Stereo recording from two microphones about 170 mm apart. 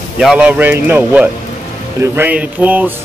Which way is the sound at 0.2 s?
5° right (ahead or behind).